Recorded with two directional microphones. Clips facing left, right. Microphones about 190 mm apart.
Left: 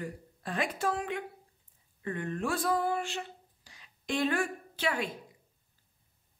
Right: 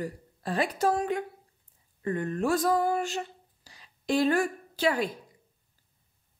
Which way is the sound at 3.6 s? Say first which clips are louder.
Right 7 dB; 35° right (ahead or behind).